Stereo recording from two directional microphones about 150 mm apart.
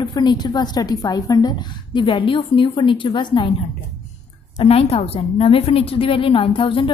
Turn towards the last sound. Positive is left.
turn(degrees=35)  # may be behind; listen again after turning